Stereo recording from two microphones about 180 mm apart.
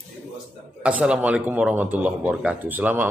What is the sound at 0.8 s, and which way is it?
A man's voice, 5° right (ahead or behind).